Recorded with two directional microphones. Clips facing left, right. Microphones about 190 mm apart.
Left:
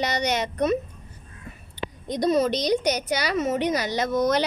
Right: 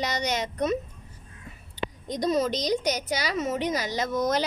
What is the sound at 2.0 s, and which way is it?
Speech, 65° left (ahead or behind).